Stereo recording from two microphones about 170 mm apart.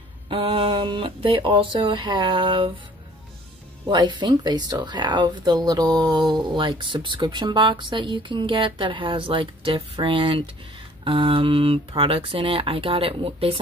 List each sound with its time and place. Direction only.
0.3 s speech: 35° right (ahead or behind)
3.9 s speech: 25° right (ahead or behind)